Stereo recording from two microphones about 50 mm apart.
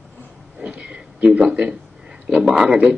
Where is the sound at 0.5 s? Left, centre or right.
Right.